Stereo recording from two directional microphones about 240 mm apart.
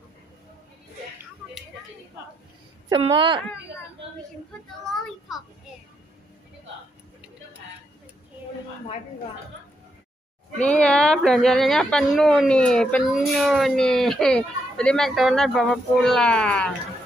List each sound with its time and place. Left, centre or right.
2.9 s speech: right
4.9 s child singing: centre
10.6 s speech: centre